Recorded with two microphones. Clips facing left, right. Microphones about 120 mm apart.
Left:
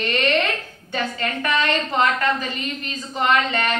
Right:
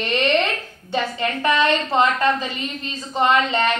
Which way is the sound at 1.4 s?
25° right (ahead or behind).